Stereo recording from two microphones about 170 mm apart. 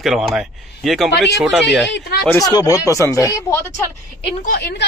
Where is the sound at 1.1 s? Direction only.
90° left.